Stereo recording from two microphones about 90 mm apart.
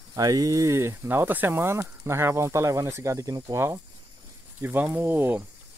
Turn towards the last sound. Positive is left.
turn(degrees=-25)  # may be behind; listen again after turning